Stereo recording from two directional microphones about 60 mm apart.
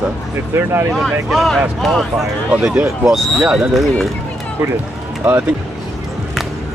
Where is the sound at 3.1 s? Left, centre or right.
Centre.